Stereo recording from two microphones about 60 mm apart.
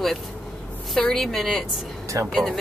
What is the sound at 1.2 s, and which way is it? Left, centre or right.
Speech, centre.